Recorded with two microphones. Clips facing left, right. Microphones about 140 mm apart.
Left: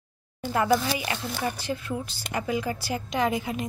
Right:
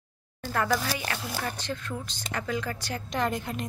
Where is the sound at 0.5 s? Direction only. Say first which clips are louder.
Left 4 dB; 15° left (ahead or behind).